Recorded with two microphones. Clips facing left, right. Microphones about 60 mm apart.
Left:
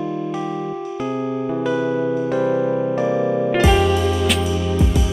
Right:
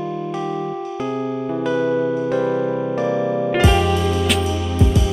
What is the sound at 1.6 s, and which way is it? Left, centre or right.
Music, centre.